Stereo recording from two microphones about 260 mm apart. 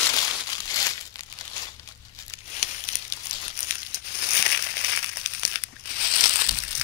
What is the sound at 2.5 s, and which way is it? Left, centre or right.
Crumpling, left.